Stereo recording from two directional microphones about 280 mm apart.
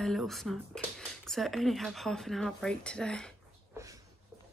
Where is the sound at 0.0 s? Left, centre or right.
Centre.